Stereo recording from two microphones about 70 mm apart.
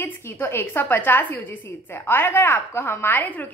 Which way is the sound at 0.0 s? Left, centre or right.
Left.